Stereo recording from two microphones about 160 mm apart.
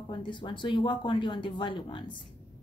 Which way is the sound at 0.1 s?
30° left (ahead or behind).